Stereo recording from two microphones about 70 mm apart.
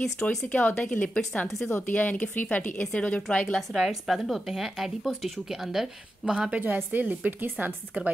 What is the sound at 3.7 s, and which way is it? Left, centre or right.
Speech, centre.